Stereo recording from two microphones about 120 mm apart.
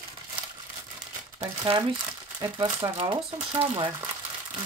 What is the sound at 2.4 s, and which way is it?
Speech, 40° right (ahead or behind).